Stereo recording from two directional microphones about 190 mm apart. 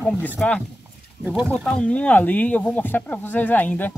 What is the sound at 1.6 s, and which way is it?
Speech, 5° left (ahead or behind).